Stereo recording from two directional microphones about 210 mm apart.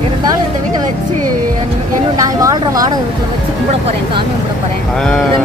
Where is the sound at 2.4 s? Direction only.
15° right (ahead or behind).